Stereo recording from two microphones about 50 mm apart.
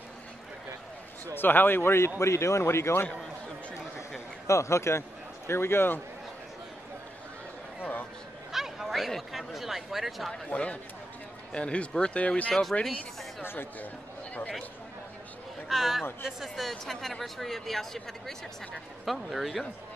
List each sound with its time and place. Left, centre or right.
1.3 s speech: left
4.5 s speech: left
5.5 s speech: left
8.5 s chatter: centre
9.3 s speech: centre
10.5 s speech: left
13.4 s speech: left
15.7 s speech: centre